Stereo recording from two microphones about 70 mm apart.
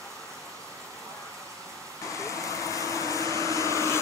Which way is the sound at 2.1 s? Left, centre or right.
Left.